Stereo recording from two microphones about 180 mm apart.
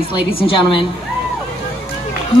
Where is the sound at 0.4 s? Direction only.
30° left (ahead or behind).